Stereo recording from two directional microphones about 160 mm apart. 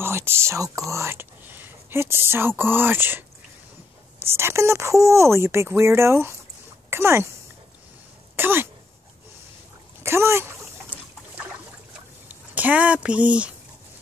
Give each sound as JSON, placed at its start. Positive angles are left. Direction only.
{"t": 0.0, "sound": "speech", "side_deg": -15}
{"t": 8.4, "sound": "speech", "side_deg": -15}
{"t": 10.0, "sound": "speech", "side_deg": -15}
{"t": 12.3, "sound": "speech", "side_deg": -10}